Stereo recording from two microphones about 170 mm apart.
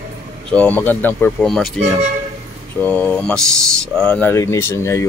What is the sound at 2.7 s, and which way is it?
Speech, 10° left (ahead or behind).